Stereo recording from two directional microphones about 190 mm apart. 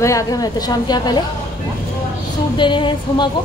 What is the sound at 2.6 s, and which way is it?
Speech, 25° left (ahead or behind).